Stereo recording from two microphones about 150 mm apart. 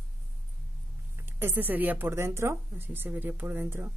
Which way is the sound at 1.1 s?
15° right (ahead or behind).